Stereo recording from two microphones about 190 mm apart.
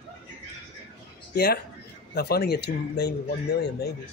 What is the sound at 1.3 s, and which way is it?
A man's voice, 55° left (ahead or behind).